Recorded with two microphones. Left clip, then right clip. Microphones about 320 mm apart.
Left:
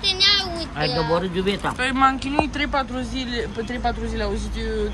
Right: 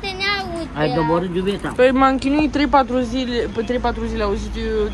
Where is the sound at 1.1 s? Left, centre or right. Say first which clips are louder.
Right 2 dB; centre.